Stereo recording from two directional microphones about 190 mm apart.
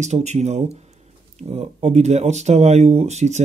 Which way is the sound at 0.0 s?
35° right (ahead or behind).